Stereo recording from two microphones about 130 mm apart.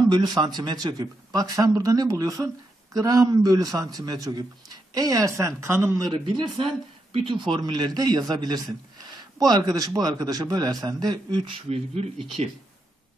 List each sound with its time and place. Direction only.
0.1 s a man's voice: 35° right (ahead or behind)
11.7 s speech: 55° right (ahead or behind)